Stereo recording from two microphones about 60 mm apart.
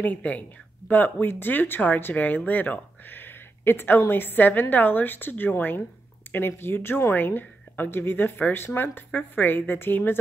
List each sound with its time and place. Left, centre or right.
0.0 s speech: left